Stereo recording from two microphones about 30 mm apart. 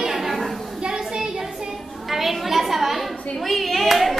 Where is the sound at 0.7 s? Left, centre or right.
Right.